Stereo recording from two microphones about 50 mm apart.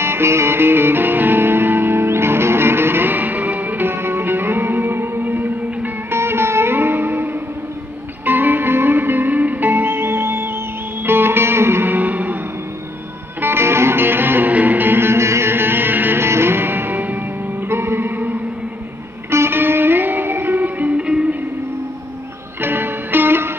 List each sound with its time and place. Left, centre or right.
0.0 s music: right
6.1 s music: right
8.3 s music: right
11.9 s music: right
13.4 s music: right
14.5 s music: right
15.5 s music: right
16.2 s music: right
17.6 s music: right
19.3 s music: right
21.0 s music: centre
22.6 s music: right